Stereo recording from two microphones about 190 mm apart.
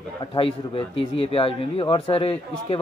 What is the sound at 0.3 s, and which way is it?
Speech, 30° left (ahead or behind).